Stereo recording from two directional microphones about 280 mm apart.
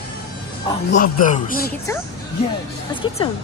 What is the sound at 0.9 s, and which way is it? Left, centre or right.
Speech, left.